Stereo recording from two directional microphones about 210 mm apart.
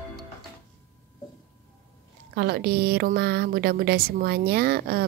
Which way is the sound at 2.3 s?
50° right (ahead or behind).